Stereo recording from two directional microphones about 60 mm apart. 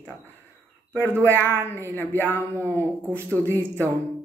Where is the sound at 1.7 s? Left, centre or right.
Left.